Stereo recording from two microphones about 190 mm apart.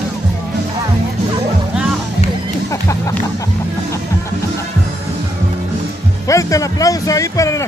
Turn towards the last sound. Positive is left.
turn(degrees=15)  # may be behind; listen again after turning